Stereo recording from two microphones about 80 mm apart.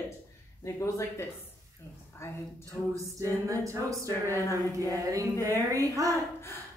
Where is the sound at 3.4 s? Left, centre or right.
Right.